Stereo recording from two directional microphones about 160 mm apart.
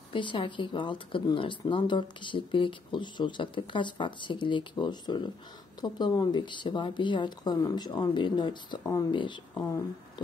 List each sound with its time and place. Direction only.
0.1 s speech: 30° left (ahead or behind)